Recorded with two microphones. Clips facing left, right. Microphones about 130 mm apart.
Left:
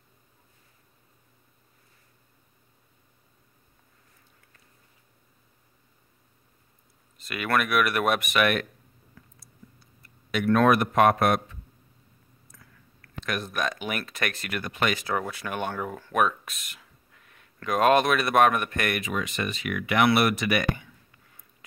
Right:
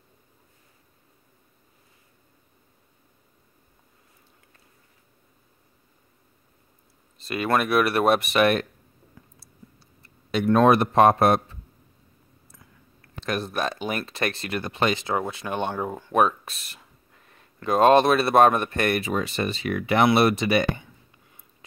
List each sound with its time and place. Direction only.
7.2 s speech: 30° right (ahead or behind)
9.1 s clicking: 30° right (ahead or behind)
12.4 s speech: 25° right (ahead or behind)